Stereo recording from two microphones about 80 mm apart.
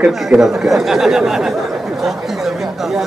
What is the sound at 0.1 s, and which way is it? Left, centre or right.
Speech, centre.